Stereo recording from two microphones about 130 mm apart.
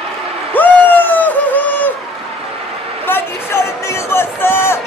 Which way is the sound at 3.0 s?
20° left (ahead or behind).